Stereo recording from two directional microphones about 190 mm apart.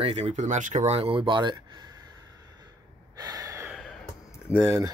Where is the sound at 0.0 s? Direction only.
35° right (ahead or behind).